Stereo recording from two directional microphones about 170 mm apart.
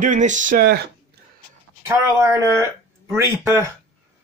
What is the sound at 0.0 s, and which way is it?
Speech, 50° right (ahead or behind).